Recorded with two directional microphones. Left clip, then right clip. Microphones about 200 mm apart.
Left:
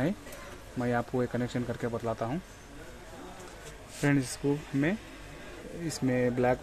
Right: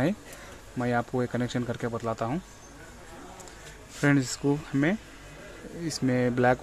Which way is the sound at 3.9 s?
15° right (ahead or behind).